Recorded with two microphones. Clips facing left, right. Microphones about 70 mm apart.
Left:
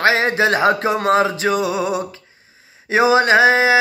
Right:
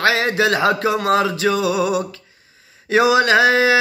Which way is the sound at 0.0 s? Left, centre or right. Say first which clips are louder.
Left 1 dB; left.